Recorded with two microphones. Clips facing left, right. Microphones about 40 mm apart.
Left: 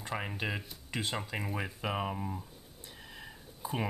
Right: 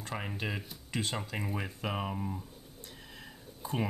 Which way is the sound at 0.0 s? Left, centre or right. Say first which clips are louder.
Left 1 dB; centre.